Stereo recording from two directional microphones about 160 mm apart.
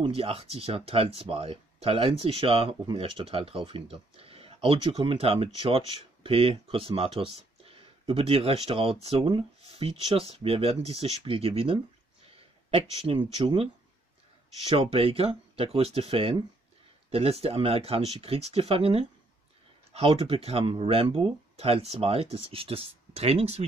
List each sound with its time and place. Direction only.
0.0 s speech: 35° right (ahead or behind)
14.7 s speech: 35° right (ahead or behind)